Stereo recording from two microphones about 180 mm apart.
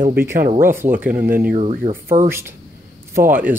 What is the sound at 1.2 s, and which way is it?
Speech, 55° right (ahead or behind).